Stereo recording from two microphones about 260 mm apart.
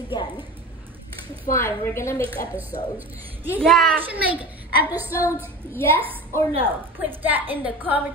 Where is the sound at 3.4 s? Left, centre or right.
Centre.